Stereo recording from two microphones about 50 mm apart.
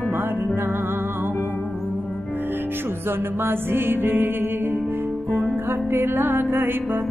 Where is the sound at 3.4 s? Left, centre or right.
Right.